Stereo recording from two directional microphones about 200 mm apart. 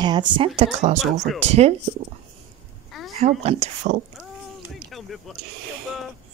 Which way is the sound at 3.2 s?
35° right (ahead or behind).